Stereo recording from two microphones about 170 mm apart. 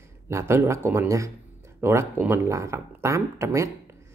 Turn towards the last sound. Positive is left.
turn(degrees=-15)  # may be behind; listen again after turning